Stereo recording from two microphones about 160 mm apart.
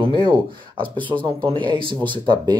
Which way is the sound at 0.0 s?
35° right (ahead or behind).